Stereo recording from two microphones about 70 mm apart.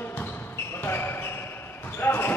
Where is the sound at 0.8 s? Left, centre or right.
Left.